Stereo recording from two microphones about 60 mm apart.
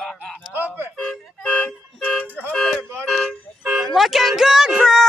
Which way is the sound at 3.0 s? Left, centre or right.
Centre.